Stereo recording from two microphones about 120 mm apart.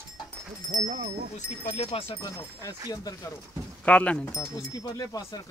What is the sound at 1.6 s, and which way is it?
Speech, 60° left (ahead or behind).